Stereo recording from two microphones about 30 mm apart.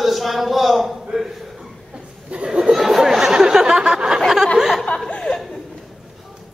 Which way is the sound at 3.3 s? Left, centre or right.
Right.